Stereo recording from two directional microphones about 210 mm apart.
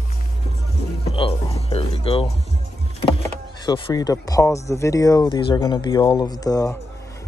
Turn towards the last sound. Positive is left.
turn(degrees=15)  # may be behind; listen again after turning